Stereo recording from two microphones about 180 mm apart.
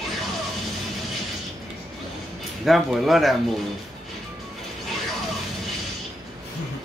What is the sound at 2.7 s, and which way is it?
Speech, centre (ahead or behind).